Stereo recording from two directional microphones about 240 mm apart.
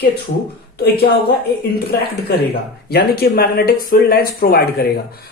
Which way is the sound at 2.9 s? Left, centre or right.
Left.